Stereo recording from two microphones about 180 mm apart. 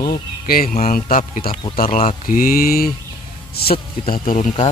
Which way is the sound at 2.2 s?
50° left (ahead or behind).